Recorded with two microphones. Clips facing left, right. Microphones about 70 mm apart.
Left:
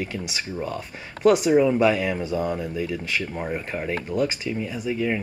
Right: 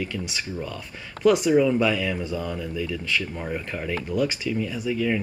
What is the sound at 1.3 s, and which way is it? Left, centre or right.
Speech, centre.